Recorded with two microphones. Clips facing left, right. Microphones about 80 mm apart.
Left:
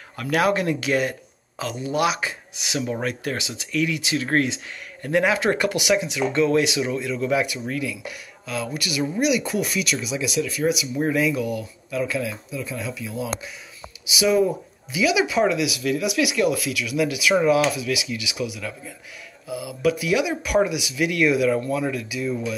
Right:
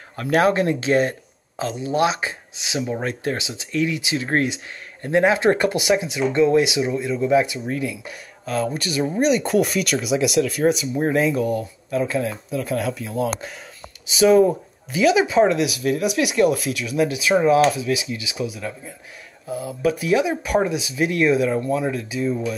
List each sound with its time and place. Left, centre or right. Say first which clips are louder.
0.1 s speech: right 3 dB; right
12.4 s speech: right 7 dB; right
14.1 s speech: right 5 dB; right